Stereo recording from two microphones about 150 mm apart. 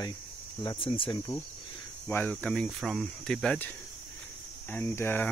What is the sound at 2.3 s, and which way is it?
Speech, 5° left (ahead or behind).